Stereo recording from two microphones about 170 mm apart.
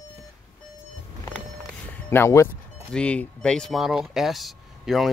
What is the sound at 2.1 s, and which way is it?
Speech, 15° left (ahead or behind).